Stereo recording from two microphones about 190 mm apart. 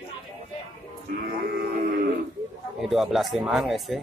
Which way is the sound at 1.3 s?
50° right (ahead or behind).